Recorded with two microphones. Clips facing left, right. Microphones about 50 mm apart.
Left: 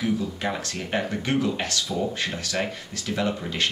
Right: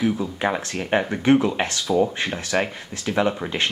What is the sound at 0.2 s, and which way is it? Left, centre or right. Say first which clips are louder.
Speech: right 4 dB; right.